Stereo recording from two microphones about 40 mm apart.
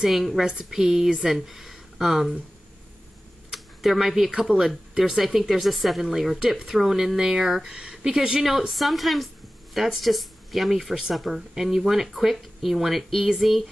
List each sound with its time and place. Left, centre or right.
0.1 s speech: centre
3.5 s a sound: centre
4.4 s speech: centre
7.2 s speech: centre
8.7 s speech: centre